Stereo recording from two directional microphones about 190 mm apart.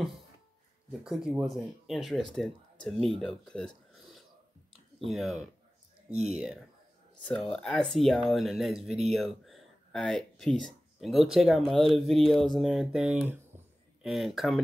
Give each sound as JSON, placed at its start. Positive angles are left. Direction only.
{"t": 1.0, "sound": "speech", "side_deg": -5}
{"t": 7.2, "sound": "speech", "side_deg": 5}